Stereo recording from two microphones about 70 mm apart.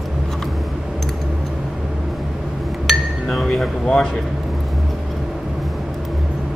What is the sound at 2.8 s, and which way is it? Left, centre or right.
Speech, centre.